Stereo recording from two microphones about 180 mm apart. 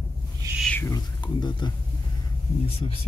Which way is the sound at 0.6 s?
10° left (ahead or behind).